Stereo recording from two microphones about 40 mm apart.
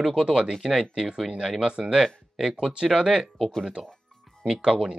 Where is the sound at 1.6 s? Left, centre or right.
Right.